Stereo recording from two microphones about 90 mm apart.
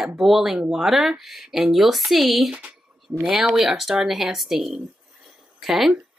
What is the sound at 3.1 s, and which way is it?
Speech, 15° right (ahead or behind).